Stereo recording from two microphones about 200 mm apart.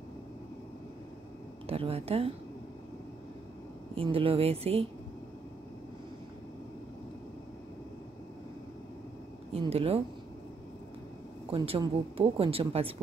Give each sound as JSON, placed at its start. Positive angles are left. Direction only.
{"t": 1.7, "sound": "speech", "side_deg": -30}
{"t": 3.9, "sound": "speech", "side_deg": -25}
{"t": 9.5, "sound": "speech", "side_deg": -30}
{"t": 11.5, "sound": "speech", "side_deg": -25}